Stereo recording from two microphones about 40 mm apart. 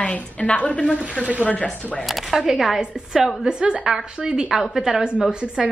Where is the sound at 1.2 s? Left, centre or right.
Right.